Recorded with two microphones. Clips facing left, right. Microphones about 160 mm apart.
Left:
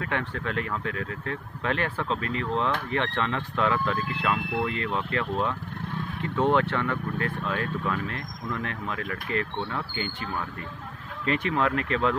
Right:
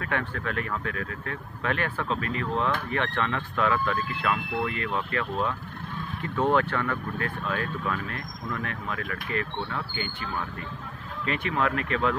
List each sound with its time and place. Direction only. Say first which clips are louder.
0.0 s speech: even; 25° left (ahead or behind)
6.2 s speech: left 1 dB; 20° left (ahead or behind)
11.2 s speech: left 2 dB; 30° left (ahead or behind)